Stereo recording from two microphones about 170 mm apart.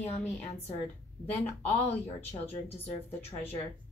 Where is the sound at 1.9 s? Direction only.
10° left (ahead or behind).